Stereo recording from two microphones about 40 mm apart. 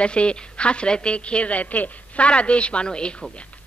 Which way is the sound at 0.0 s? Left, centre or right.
Left.